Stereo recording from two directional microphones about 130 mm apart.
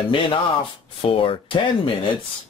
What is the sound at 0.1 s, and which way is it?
Speech, 40° left (ahead or behind).